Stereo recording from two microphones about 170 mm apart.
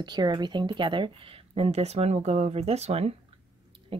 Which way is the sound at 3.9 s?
30° right (ahead or behind).